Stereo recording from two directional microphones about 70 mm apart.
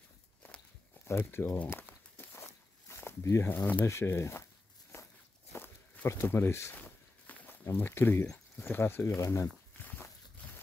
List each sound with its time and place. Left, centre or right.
1.0 s speech: left
1.7 s walk: left
3.4 s speech: left
3.8 s speech: left
6.2 s speech: left
6.7 s walk: left
7.6 s speech: left
9.8 s walk: left